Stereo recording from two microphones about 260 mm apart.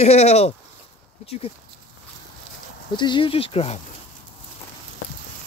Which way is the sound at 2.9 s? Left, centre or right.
Centre.